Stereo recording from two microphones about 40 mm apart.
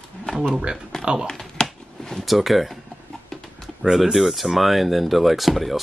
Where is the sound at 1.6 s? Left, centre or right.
Left.